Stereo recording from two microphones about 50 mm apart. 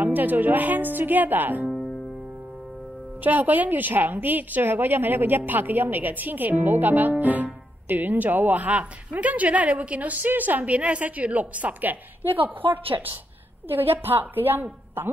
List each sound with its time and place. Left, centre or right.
0.0 s a woman's voice: right
3.2 s a woman's voice: right